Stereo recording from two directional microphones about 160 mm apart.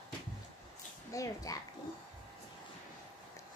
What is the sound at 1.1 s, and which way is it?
Speech, 20° left (ahead or behind).